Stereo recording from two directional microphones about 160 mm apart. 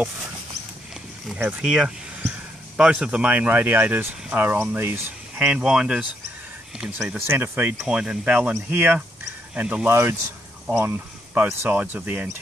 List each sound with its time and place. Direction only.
1.3 s speech: 5° right (ahead or behind)
5.4 s speech: 5° right (ahead or behind)